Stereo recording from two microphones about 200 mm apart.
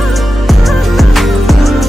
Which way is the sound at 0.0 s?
Centre (ahead or behind).